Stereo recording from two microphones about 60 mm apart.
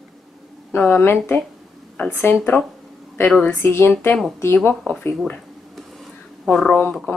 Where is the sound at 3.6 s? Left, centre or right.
Left.